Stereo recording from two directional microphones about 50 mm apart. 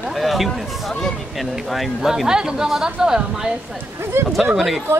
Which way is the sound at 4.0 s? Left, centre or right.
Right.